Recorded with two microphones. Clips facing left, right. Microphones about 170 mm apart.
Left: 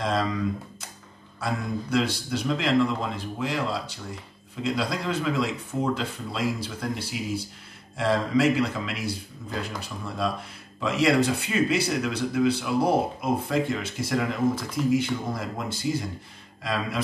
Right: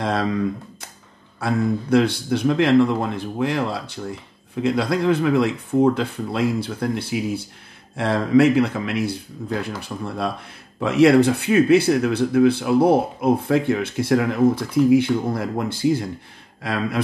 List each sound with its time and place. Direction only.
0.0 s speech: 60° right (ahead or behind)